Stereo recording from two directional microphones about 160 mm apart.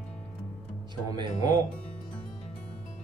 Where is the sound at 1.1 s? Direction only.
25° right (ahead or behind).